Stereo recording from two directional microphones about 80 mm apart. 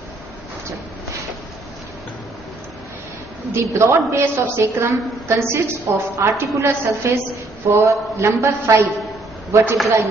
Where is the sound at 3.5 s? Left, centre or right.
Right.